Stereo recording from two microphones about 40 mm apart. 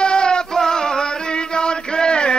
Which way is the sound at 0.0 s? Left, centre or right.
Left.